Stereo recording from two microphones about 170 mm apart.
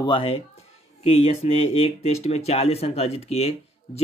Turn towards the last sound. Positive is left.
turn(degrees=40)  # may be behind; listen again after turning